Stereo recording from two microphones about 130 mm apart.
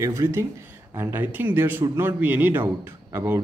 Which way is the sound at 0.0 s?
20° right (ahead or behind).